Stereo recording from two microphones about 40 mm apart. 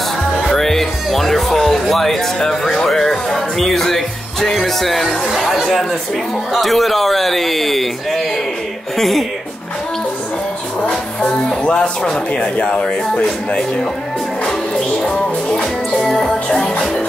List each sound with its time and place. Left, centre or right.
0.5 s a man's voice: centre
10.9 s speech: left
12.6 s music: left
15.0 s music: left